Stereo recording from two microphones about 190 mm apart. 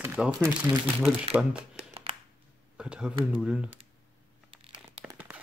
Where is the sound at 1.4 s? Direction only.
5° right (ahead or behind).